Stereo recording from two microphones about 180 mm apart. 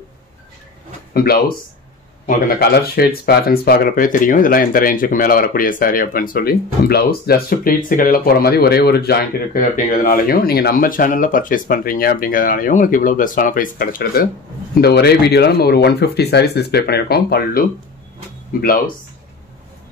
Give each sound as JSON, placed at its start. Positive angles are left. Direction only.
{"t": 1.1, "sound": "speech", "side_deg": 60}
{"t": 14.8, "sound": "speech", "side_deg": 65}